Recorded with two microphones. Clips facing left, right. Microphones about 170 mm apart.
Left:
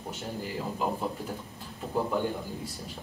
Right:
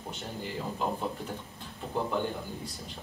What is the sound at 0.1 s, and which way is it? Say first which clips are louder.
A woman's voice: left 2 dB; 5° left (ahead or behind).